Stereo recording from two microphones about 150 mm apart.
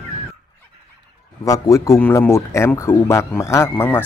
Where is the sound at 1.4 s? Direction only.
20° left (ahead or behind).